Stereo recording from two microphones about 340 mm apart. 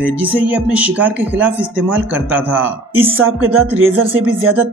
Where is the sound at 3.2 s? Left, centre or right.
Right.